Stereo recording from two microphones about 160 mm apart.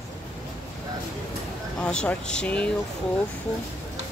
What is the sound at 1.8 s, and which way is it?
Speech, 5° left (ahead or behind).